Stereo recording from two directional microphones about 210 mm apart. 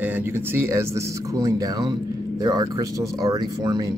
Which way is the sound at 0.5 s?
15° right (ahead or behind).